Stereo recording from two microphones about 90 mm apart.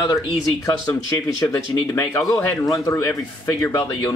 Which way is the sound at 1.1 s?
35° left (ahead or behind).